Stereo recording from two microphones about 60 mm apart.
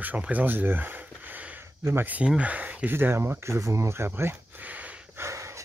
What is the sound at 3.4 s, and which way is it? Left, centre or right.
Speech, right.